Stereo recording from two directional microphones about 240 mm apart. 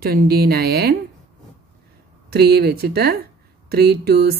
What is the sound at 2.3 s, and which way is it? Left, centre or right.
Speech, right.